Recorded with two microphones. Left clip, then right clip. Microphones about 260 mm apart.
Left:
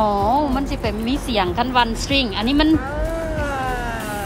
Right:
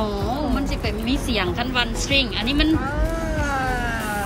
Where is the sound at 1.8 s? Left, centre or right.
Left.